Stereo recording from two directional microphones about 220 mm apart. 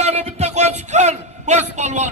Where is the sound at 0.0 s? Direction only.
30° right (ahead or behind).